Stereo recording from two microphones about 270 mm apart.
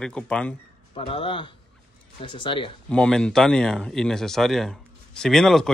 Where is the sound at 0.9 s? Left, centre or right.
Centre.